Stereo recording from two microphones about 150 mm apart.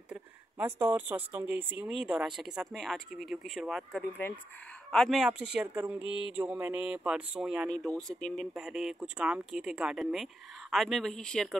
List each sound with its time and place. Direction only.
0.1 s speech: 10° right (ahead or behind)
4.2 s speech: 15° left (ahead or behind)
4.9 s speech: centre (ahead or behind)